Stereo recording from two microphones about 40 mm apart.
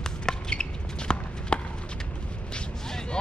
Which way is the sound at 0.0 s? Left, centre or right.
Centre.